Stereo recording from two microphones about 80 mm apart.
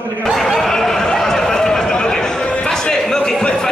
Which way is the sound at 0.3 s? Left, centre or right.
Centre.